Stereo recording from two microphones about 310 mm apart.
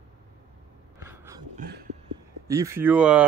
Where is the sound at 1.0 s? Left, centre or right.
Centre.